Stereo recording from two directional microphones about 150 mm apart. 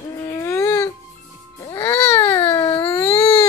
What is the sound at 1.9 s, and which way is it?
Baby cry, 15° left (ahead or behind).